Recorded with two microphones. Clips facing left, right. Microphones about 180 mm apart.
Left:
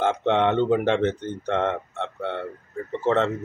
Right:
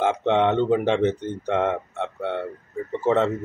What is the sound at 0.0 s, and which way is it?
Speech, 5° right (ahead or behind).